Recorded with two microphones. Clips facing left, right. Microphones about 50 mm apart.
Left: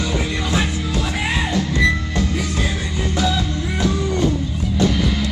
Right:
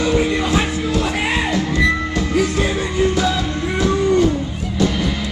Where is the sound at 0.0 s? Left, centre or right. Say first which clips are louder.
Right 6 dB; right.